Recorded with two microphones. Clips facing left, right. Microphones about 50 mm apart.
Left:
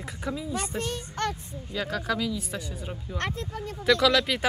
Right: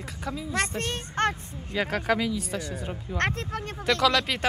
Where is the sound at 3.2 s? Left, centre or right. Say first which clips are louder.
Right 4 dB; right.